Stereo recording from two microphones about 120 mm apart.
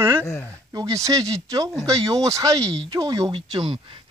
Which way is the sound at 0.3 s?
15° left (ahead or behind).